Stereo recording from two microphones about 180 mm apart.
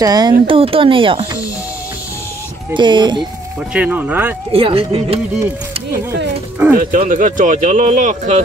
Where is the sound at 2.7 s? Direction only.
25° right (ahead or behind).